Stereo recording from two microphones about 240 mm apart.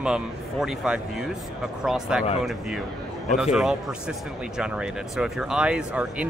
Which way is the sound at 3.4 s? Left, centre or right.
Centre.